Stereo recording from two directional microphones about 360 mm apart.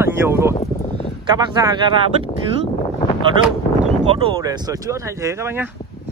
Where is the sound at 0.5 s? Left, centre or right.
Centre.